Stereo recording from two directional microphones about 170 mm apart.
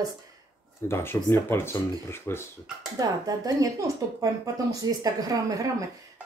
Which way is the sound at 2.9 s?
20° right (ahead or behind).